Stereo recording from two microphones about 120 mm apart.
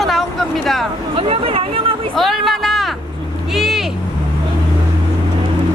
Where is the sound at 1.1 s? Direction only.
50° right (ahead or behind).